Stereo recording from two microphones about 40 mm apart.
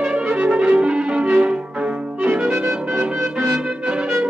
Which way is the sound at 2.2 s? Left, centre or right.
Right.